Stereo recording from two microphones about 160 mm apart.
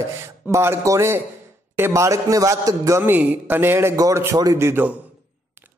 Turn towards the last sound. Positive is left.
turn(degrees=-15)  # may be behind; listen again after turning